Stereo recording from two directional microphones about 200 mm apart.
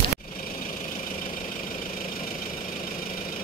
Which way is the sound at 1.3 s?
40° left (ahead or behind).